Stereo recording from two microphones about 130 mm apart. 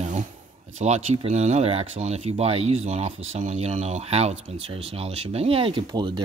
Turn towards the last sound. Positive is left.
turn(degrees=-35)  # may be behind; listen again after turning